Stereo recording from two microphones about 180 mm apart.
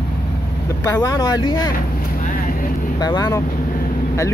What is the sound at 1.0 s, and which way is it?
Speech, 20° left (ahead or behind).